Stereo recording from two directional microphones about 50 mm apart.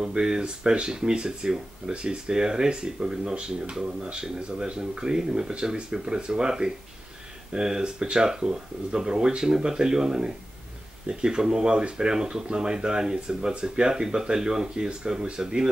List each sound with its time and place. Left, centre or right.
0.0 s speech: centre